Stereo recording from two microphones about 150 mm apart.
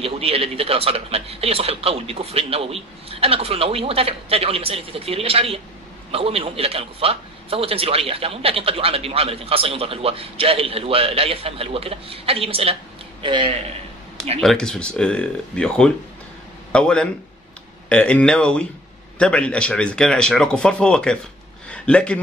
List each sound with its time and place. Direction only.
0.0 s a man's voice: 40° right (ahead or behind)
14.4 s a man's voice: 5° left (ahead or behind)